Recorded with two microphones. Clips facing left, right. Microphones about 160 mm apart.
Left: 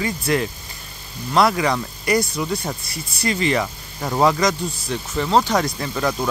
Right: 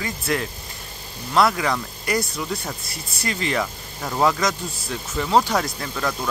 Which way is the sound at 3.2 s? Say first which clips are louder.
Left 4 dB; centre (ahead or behind).